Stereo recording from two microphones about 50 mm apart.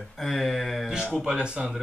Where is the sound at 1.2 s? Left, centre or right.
Centre.